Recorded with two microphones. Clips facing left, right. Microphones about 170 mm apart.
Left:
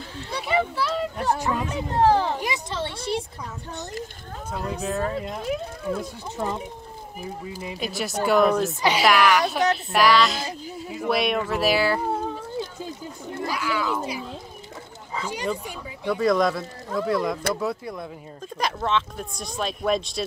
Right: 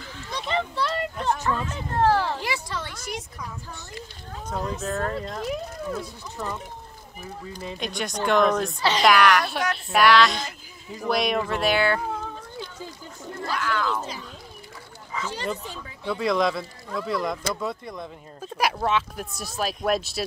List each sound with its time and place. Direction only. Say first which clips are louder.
0.3 s speech: left 3 dB; 10° left (ahead or behind); by 3.3 s 30° left (ahead or behind)
4.5 s speech: even; 5° left (ahead or behind)
13.4 s speech: even; 10° left (ahead or behind)
15.2 s speech: left 2 dB; 10° left (ahead or behind)
16.2 s speech: left 2 dB; centre (ahead or behind)